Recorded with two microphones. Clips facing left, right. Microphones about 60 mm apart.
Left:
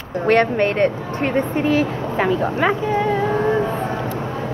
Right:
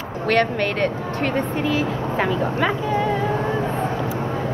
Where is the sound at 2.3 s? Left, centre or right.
Centre.